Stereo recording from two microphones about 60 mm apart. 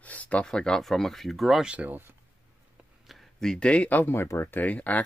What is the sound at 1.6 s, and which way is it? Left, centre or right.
Speech, centre.